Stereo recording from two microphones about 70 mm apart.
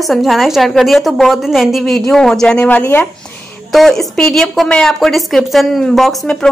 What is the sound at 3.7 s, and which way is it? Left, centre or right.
A woman's voice, centre.